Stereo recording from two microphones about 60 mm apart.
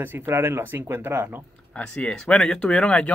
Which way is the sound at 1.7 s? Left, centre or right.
Centre.